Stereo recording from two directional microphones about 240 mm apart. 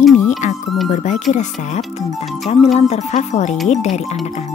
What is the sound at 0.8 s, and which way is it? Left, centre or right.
Speech, left.